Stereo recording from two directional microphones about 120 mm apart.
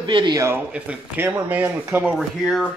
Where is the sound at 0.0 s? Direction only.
40° right (ahead or behind).